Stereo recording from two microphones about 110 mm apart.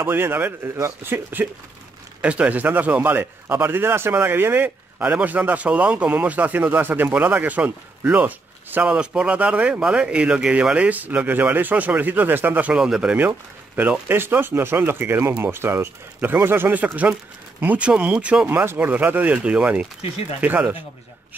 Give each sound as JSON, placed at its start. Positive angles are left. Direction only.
{"t": 0.0, "sound": "a man's voice", "side_deg": -20}